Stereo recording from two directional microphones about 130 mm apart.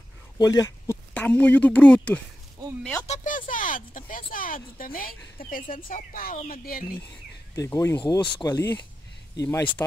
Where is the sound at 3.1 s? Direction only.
90° left.